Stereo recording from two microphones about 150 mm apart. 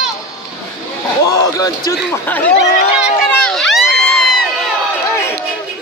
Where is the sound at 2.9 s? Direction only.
5° right (ahead or behind).